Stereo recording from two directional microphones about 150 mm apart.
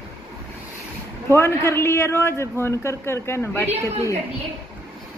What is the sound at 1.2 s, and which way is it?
A man's voice, 15° left (ahead or behind).